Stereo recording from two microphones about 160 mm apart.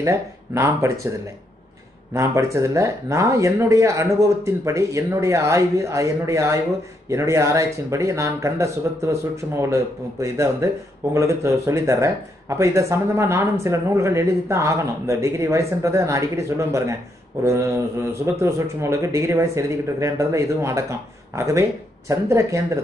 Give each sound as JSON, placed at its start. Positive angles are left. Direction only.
{"t": 0.0, "sound": "speech", "side_deg": -20}
{"t": 2.1, "sound": "speech", "side_deg": -20}